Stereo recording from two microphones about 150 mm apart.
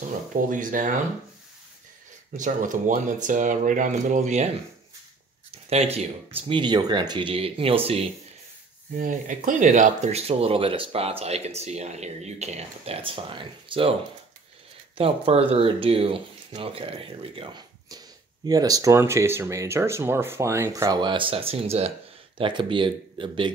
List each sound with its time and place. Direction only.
0.5 s speech: 60° right (ahead or behind)
2.3 s speech: 60° right (ahead or behind)
5.5 s speech: 45° right (ahead or behind)
8.9 s speech: 65° right (ahead or behind); by 13.9 s 35° right (ahead or behind)
15.0 s speech: 40° right (ahead or behind)